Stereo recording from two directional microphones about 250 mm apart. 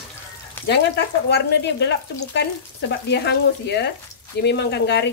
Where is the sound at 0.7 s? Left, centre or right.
Left.